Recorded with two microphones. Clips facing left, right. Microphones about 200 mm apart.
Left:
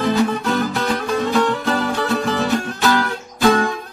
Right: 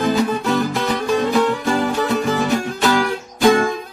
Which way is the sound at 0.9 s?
10° right (ahead or behind).